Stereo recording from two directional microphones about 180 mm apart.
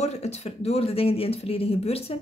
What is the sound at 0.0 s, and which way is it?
A woman's voice, 35° left (ahead or behind).